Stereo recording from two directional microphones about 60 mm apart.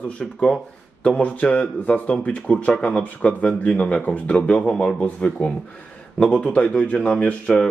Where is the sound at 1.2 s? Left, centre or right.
Centre.